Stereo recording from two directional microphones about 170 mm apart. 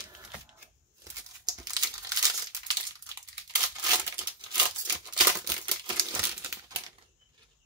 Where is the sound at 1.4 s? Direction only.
25° right (ahead or behind).